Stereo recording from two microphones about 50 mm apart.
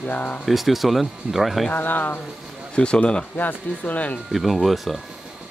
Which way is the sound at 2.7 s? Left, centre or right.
Centre.